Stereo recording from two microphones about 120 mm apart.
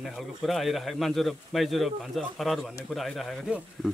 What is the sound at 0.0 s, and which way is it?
Speech, centre (ahead or behind).